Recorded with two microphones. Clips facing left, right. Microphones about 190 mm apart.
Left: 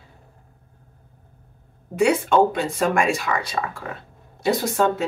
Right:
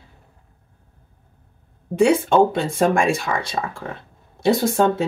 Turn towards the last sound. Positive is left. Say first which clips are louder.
# right 3 dB
turn(degrees=-30)  # may be behind; listen again after turning